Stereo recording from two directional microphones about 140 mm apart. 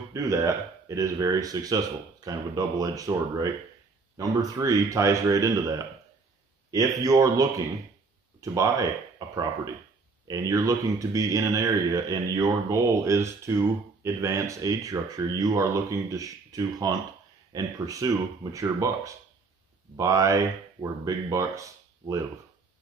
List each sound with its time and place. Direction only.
0.1 s speech: 25° right (ahead or behind)
6.7 s speech: 25° right (ahead or behind)
10.2 s speech: 25° right (ahead or behind)